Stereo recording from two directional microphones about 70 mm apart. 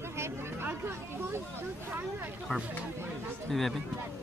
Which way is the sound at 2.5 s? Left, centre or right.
Centre.